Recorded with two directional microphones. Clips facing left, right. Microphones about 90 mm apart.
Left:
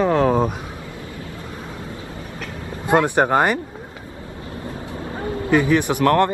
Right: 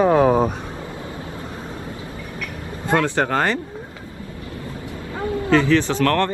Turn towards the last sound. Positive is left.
turn(degrees=15)  # may be behind; listen again after turning